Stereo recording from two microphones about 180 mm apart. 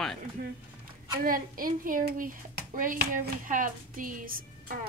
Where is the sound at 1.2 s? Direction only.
50° right (ahead or behind).